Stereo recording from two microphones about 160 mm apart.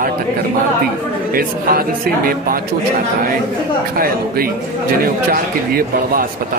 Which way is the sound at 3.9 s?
65° right (ahead or behind).